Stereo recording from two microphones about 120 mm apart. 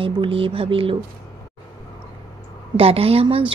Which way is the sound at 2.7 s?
55° right (ahead or behind).